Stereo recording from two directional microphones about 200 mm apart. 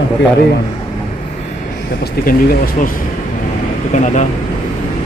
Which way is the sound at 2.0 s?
50° left (ahead or behind).